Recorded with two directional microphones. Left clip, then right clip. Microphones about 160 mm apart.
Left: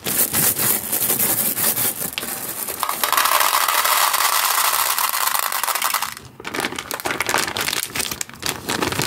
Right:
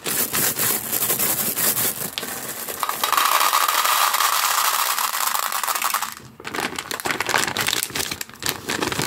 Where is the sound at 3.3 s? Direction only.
5° left (ahead or behind).